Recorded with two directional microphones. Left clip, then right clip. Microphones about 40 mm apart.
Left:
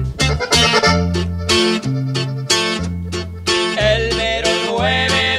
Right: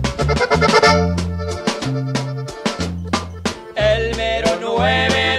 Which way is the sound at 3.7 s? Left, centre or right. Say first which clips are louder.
Left 1 dB; right.